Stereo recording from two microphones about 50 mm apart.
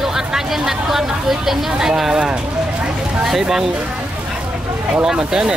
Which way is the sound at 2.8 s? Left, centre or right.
Centre.